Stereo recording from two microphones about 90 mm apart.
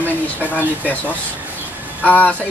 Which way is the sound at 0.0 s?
20° left (ahead or behind).